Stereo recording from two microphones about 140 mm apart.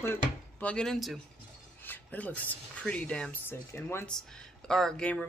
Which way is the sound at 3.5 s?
20° left (ahead or behind).